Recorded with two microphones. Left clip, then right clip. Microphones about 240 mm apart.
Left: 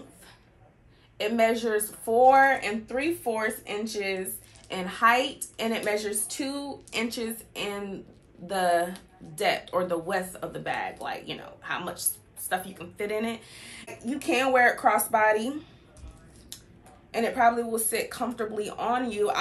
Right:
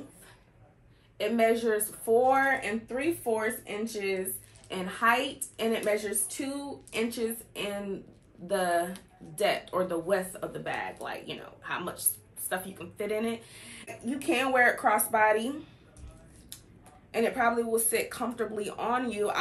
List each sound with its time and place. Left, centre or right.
1.1 s speech: centre
17.1 s speech: centre